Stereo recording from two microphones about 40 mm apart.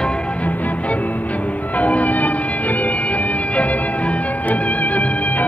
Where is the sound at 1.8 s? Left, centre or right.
Left.